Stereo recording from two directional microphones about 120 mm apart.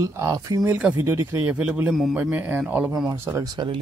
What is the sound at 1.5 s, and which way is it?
Speech, 10° right (ahead or behind).